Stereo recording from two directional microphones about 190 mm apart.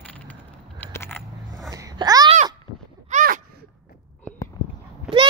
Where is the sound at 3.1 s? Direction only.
40° right (ahead or behind).